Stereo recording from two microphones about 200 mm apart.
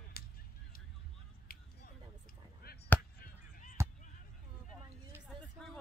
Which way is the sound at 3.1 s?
50° left (ahead or behind).